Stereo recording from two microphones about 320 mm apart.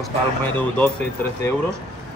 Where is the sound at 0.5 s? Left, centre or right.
Centre.